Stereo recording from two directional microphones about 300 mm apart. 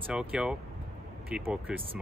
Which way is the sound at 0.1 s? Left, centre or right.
Centre.